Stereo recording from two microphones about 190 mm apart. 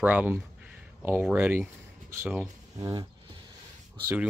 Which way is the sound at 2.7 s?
20° right (ahead or behind).